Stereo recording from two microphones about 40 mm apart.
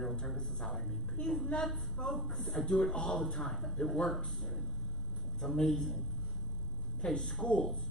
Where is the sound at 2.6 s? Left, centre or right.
Centre.